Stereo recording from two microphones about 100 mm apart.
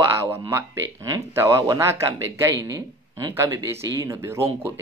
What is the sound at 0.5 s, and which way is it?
Speech, 25° right (ahead or behind).